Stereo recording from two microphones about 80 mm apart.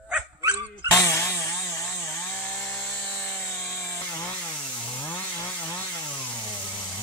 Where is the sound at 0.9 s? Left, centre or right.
Left.